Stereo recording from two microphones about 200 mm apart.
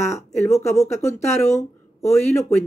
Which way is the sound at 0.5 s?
15° left (ahead or behind).